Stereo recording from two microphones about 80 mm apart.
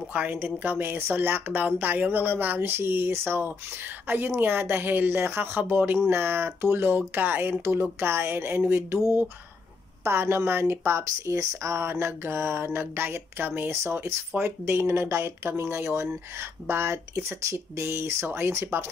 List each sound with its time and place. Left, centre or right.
0.1 s speech: right
10.0 s speech: right